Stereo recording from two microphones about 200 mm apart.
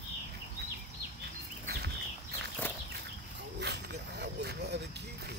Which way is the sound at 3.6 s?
55° right (ahead or behind).